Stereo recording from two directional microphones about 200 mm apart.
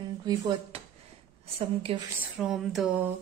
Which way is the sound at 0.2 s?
20° right (ahead or behind).